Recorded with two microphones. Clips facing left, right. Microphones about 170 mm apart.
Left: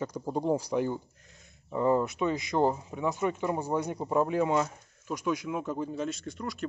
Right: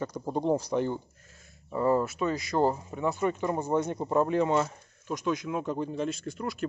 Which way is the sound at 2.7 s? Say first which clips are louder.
Right 1 dB; 5° left (ahead or behind).